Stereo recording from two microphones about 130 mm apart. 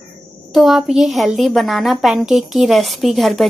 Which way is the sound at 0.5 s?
Centre (ahead or behind).